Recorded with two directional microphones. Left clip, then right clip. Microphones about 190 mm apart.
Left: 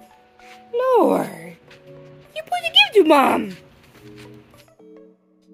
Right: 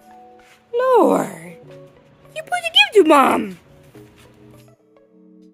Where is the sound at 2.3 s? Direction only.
5° right (ahead or behind).